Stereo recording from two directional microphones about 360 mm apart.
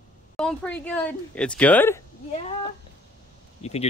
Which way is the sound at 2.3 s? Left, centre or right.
Centre.